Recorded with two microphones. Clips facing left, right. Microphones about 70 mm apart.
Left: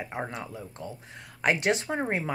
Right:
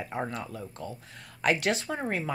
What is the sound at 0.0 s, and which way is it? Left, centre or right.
Speech, centre.